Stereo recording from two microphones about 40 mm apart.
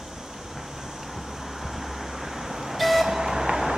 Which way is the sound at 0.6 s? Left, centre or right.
Centre.